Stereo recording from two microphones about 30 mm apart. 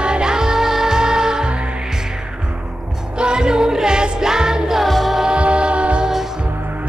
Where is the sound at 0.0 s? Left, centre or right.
Right.